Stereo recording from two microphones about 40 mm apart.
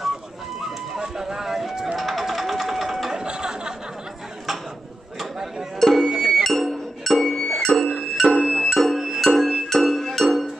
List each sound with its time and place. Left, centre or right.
0.9 s music: centre
3.1 s chatter: centre
5.8 s music: centre
6.1 s music: centre
6.4 s music: centre
7.9 s music: centre